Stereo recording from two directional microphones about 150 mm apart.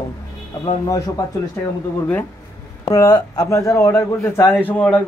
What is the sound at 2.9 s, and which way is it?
Speech, 25° left (ahead or behind).